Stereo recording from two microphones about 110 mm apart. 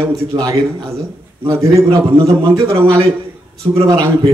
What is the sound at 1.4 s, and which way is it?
A man's voice, 25° right (ahead or behind).